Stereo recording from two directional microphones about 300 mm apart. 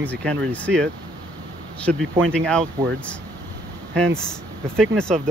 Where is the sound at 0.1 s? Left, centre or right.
Centre.